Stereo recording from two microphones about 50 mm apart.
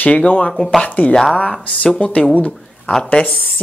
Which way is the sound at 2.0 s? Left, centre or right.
Left.